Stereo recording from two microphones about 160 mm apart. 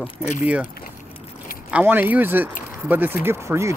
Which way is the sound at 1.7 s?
10° right (ahead or behind).